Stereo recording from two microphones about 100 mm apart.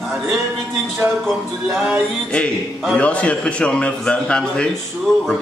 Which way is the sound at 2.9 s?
10° left (ahead or behind).